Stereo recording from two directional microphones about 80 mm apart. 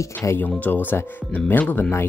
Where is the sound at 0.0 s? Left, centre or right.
Left.